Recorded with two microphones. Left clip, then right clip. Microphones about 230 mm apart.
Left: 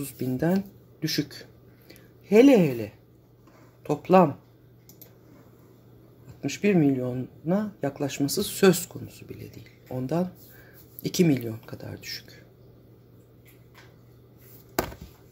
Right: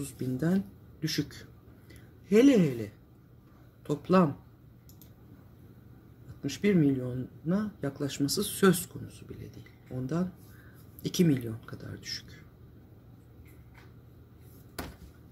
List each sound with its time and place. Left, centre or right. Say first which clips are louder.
0.0 s speech: left 6 dB; centre
1.0 s a sound: left 5 dB; centre
3.8 s speech: left 7 dB; centre
6.4 s speech: left 4 dB; centre